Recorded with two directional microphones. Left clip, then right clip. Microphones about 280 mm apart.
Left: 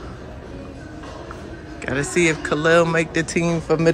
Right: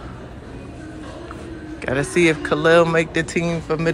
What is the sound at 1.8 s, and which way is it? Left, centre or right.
Speech, centre.